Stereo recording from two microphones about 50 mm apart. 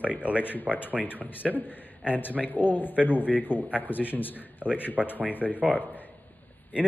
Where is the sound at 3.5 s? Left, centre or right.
Left.